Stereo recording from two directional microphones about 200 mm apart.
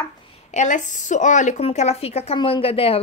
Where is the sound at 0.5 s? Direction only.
35° left (ahead or behind).